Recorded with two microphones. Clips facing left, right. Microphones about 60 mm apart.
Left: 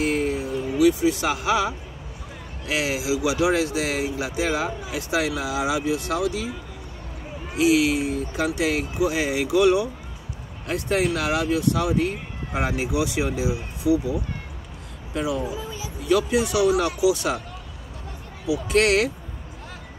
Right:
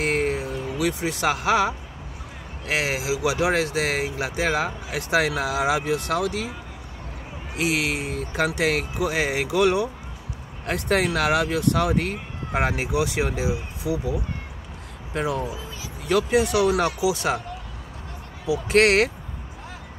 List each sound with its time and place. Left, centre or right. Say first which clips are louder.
0.0 s music: even; right
2.6 s speech: even; right
7.5 s speech: left 5 dB; right
10.7 s speech: even; right
15.1 s speech: even; right
18.5 s speech: right 1 dB; right